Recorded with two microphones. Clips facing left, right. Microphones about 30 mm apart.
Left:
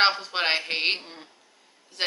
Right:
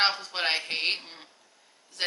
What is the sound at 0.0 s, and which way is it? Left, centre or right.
Speech, centre.